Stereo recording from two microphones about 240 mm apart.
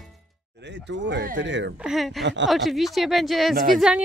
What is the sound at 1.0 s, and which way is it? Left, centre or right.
Speech, right.